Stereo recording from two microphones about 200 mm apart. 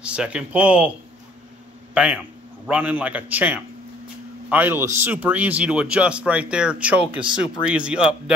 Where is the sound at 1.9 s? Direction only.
5° right (ahead or behind).